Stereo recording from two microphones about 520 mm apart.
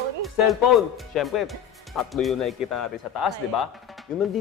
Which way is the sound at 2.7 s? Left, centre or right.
Left.